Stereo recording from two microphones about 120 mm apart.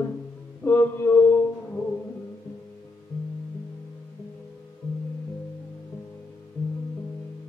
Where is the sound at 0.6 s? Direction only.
15° left (ahead or behind).